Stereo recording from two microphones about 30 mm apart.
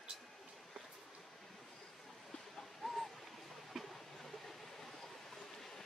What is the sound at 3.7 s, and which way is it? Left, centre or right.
Train, centre.